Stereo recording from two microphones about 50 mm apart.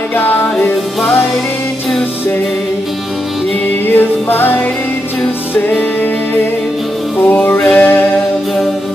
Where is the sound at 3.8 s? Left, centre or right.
Left.